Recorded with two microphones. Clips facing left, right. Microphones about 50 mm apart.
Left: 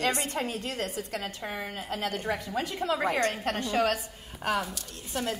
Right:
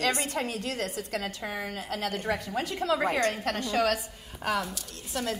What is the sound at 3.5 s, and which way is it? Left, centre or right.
Speech, left.